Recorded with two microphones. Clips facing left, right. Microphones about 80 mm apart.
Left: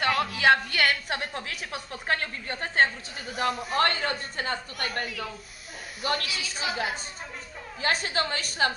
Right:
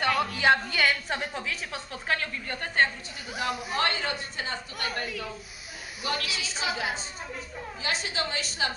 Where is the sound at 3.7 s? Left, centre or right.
Left.